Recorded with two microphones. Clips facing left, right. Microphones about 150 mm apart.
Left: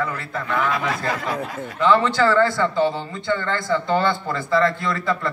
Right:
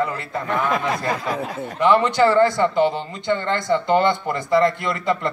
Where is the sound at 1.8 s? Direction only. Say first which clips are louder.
Right 1 dB; 20° right (ahead or behind).